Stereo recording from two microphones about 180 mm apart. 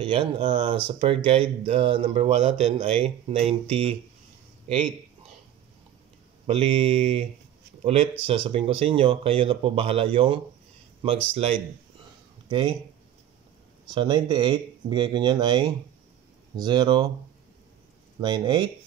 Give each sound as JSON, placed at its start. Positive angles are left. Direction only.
{"t": 0.0, "sound": "speech", "side_deg": -25}
{"t": 6.4, "sound": "speech", "side_deg": -30}
{"t": 12.4, "sound": "speech", "side_deg": -25}
{"t": 13.8, "sound": "speech", "side_deg": -25}
{"t": 18.2, "sound": "speech", "side_deg": -25}